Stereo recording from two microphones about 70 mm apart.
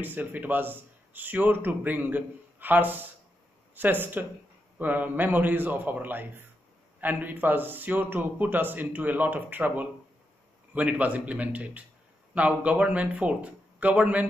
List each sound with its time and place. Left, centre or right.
0.0 s a man's voice: right